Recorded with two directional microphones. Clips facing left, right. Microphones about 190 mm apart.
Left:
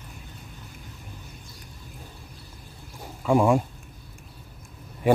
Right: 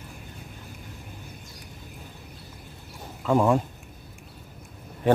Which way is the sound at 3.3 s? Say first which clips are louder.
Left 1 dB; 10° left (ahead or behind).